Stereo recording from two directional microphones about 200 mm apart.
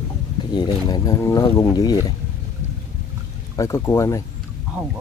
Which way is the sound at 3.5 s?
15° left (ahead or behind).